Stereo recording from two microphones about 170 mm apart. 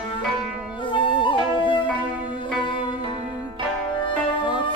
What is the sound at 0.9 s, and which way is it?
Flute, 30° left (ahead or behind).